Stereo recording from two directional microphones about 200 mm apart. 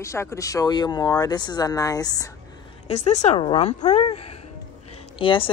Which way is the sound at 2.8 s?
35° left (ahead or behind).